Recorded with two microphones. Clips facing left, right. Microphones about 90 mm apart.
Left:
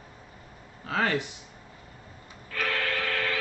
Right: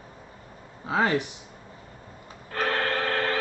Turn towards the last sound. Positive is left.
turn(degrees=-35)  # may be behind; listen again after turning